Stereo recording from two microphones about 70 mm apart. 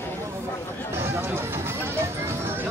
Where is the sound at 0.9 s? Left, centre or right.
Right.